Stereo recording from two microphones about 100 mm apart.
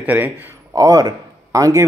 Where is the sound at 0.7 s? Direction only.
40° right (ahead or behind).